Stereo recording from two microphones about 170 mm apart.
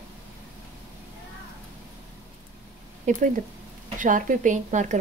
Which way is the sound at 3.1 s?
45° right (ahead or behind).